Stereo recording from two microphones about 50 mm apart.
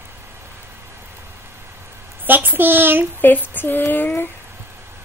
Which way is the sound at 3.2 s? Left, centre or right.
Left.